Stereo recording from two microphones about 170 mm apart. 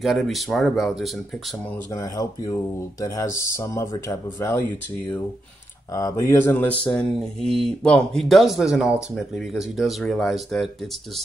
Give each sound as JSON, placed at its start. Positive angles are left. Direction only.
{"t": 0.0, "sound": "speech", "side_deg": 0}
{"t": 2.0, "sound": "speech", "side_deg": 20}